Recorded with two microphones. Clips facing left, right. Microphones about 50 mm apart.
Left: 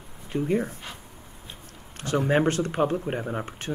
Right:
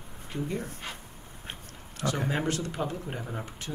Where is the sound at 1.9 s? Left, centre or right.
Left.